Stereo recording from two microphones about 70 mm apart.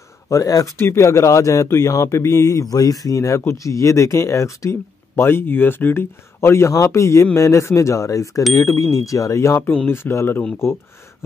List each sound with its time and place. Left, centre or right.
0.3 s speech: left
0.7 s speech: left
2.7 s speech: left
9.6 s speech: left